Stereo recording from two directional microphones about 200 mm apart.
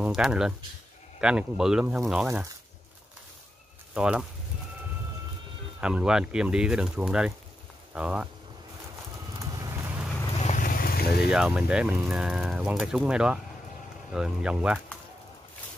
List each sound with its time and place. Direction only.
0.0 s speech: 5° right (ahead or behind)
3.9 s speech: 5° right (ahead or behind)
5.8 s speech: 5° right (ahead or behind)
9.6 s vehicle: 10° right (ahead or behind)
10.3 s vehicle: 35° left (ahead or behind); by 11.2 s 50° left (ahead or behind)
11.2 s speech: 5° right (ahead or behind)